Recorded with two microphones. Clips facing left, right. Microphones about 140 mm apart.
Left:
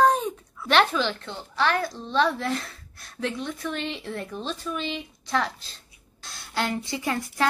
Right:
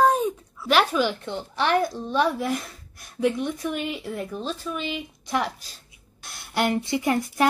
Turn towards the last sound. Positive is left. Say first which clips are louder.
# right 4 dB
turn(degrees=-20)  # may be behind; listen again after turning